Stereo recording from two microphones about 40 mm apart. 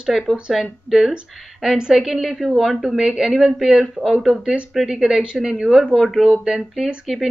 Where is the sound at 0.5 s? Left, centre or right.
Centre.